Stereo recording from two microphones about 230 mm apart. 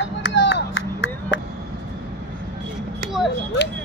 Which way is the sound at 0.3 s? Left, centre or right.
Left.